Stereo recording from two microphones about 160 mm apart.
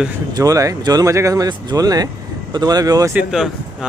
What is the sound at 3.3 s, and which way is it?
Speech, 5° right (ahead or behind).